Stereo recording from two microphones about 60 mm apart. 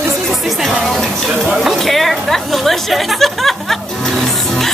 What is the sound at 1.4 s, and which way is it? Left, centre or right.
Chatter, centre.